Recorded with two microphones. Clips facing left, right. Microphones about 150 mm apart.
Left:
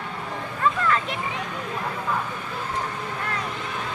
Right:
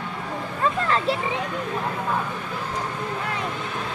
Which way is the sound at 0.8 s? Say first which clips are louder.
Right 1 dB; 35° right (ahead or behind).